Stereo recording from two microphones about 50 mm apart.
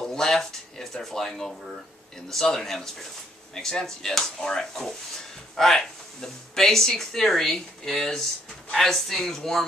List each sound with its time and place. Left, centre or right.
0.0 s speech: centre